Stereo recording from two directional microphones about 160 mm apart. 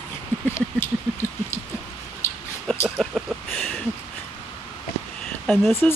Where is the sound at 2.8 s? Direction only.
Centre (ahead or behind).